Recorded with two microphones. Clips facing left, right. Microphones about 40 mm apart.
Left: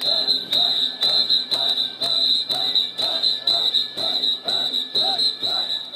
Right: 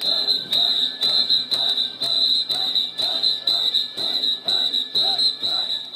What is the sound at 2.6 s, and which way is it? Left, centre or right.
Music, centre.